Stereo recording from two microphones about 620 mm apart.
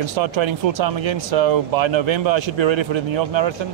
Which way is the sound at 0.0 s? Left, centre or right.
Right.